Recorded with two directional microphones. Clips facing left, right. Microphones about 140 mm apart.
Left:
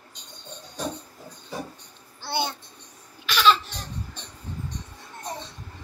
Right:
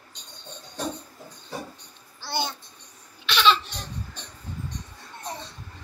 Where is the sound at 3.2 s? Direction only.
5° left (ahead or behind).